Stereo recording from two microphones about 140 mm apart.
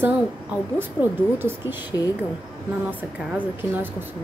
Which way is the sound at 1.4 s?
15° right (ahead or behind).